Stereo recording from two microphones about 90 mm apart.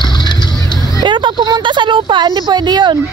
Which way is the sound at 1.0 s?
60° right (ahead or behind).